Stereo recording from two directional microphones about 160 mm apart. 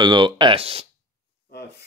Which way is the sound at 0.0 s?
30° right (ahead or behind).